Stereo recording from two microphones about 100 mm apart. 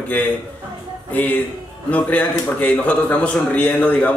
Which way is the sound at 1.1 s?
15° left (ahead or behind).